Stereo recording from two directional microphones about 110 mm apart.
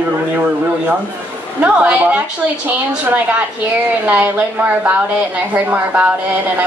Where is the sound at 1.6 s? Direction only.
10° right (ahead or behind).